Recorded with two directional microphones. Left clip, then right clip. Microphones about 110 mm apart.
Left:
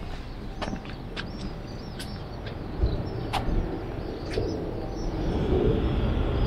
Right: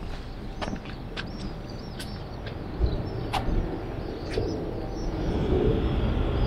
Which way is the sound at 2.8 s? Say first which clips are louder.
Even; 30° right (ahead or behind).